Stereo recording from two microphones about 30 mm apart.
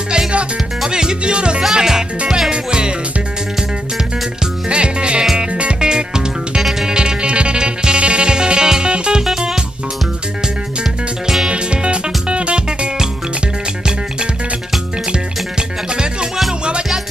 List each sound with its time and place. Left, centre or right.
0.8 s music: right
1.6 s music: centre
4.6 s music: right
5.8 s music: right
11.4 s music: right
15.5 s music: right